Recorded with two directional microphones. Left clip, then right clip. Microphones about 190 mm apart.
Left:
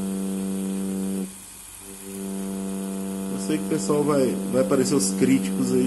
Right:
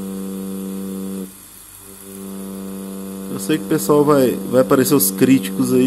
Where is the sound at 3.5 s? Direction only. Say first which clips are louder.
Right 8 dB; 45° right (ahead or behind).